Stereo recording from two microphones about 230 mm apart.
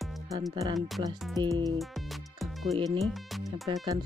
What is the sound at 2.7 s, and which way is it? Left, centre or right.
Speech, right.